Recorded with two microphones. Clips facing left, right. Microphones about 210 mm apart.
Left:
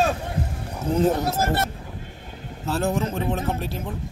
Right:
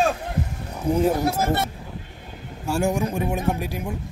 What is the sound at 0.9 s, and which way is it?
Speech, 10° right (ahead or behind).